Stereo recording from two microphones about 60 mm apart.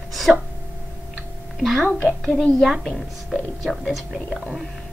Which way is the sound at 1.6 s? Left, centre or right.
Centre.